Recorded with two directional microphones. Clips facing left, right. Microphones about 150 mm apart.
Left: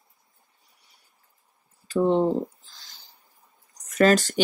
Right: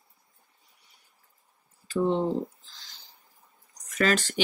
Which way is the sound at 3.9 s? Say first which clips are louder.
Left 6 dB; 40° left (ahead or behind).